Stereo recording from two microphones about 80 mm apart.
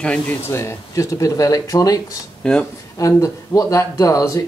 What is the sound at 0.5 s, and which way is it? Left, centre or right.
Speech, left.